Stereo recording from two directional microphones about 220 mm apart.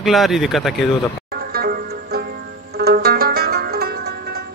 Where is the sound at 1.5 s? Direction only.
45° right (ahead or behind).